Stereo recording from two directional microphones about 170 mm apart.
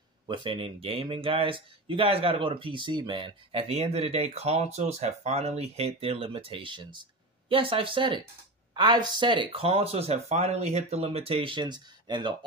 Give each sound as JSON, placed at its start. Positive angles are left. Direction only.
{"t": 0.3, "sound": "speech", "side_deg": -30}